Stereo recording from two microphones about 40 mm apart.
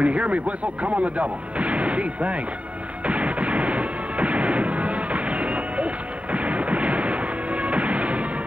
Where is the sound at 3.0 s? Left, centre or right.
Right.